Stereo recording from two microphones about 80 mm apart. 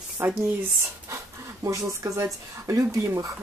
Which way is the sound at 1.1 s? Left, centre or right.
Right.